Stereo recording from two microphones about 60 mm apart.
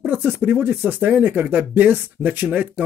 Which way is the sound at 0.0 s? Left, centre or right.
Right.